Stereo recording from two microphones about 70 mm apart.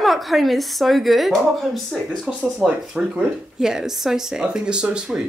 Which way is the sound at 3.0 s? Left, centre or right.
Centre.